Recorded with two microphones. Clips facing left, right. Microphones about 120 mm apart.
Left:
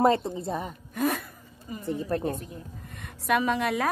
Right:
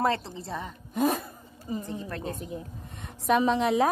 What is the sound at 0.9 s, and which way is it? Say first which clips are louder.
Gasp: right 2 dB; 25° right (ahead or behind).